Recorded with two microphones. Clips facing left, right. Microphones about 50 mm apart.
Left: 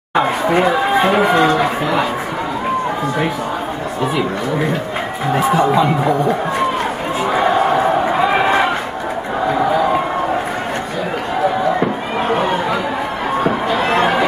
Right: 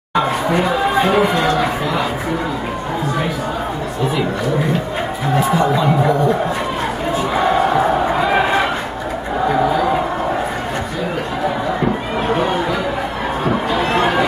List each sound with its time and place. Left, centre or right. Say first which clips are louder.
0.1 s chatter: left 2 dB; left
1.1 s speech: left 1 dB; left